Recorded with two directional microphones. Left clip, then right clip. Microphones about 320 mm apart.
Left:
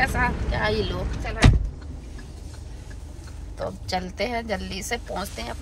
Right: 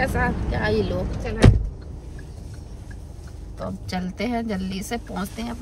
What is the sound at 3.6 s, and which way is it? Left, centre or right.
Speech, centre.